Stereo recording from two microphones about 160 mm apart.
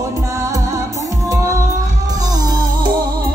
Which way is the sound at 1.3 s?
20° right (ahead or behind).